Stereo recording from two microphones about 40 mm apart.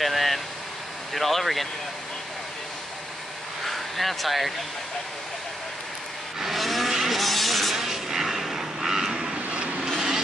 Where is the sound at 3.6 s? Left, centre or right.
Centre.